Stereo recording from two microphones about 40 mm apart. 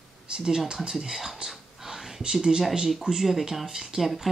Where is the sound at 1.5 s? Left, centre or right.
Centre.